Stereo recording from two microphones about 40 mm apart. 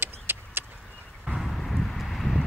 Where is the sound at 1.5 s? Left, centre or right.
Centre.